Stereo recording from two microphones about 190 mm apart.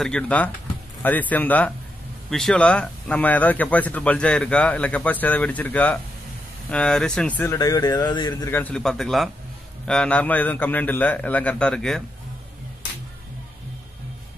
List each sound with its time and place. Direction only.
0.0 s speech: 5° left (ahead or behind)
7.5 s a man's voice: 20° left (ahead or behind); by 12.0 s 5° left (ahead or behind)